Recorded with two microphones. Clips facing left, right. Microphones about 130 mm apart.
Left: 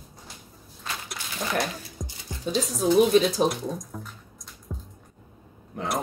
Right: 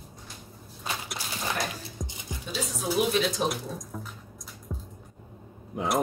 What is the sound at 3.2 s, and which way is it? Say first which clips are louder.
Speech: left 7 dB; 35° left (ahead or behind).